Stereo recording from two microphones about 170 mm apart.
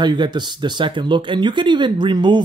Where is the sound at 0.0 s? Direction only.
25° right (ahead or behind).